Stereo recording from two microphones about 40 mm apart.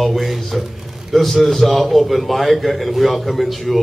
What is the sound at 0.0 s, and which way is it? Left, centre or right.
A man's voice, centre.